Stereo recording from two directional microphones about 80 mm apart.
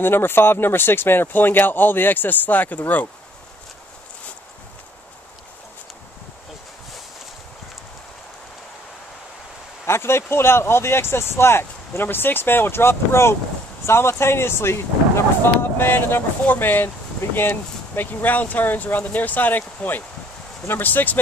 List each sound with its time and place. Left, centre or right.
0.0 s speech: left
9.8 s speech: left